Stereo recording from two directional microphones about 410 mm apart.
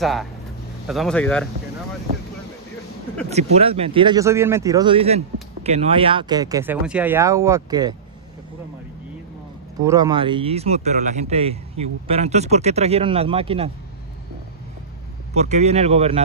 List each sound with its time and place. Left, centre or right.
0.0 s speech: centre
3.3 s speech: centre
9.8 s speech: centre
15.3 s speech: centre